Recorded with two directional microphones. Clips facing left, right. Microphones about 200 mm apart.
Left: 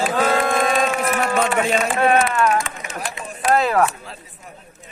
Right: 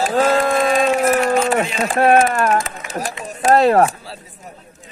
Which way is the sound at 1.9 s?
40° right (ahead or behind).